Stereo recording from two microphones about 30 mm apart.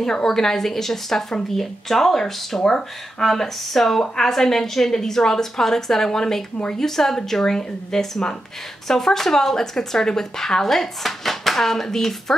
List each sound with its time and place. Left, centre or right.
0.0 s speech: centre